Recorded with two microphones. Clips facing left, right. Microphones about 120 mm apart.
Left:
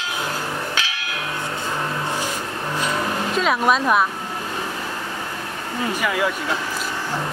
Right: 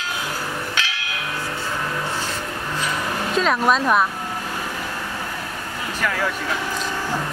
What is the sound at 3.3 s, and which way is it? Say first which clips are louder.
Speech: right 1 dB; 5° left (ahead or behind).